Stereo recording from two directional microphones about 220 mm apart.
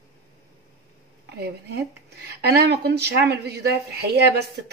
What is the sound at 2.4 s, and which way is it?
A woman's voice, 50° right (ahead or behind).